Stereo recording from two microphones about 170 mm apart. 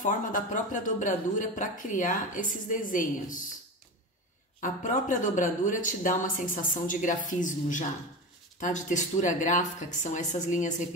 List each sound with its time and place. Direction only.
0.0 s speech: 50° left (ahead or behind)
4.6 s speech: 50° left (ahead or behind)